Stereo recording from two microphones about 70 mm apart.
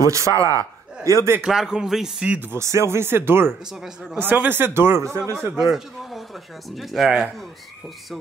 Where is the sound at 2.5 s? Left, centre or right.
Right.